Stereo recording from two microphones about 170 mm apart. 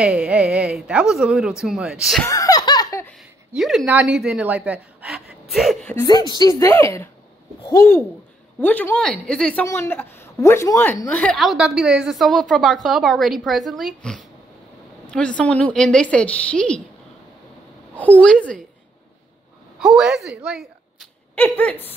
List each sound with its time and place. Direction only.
0.0 s a woman's voice: 5° right (ahead or behind)
2.2 s laughter: 20° left (ahead or behind)
3.5 s a woman's voice: centre (ahead or behind)
6.0 s a woman's voice: 25° left (ahead or behind); by 16.8 s 5° left (ahead or behind)
17.9 s a woman's voice: 10° left (ahead or behind)
19.8 s speech: centre (ahead or behind)
21.4 s a woman's voice: 10° left (ahead or behind)